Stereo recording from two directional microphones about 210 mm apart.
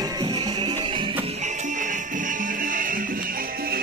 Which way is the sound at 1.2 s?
30° right (ahead or behind).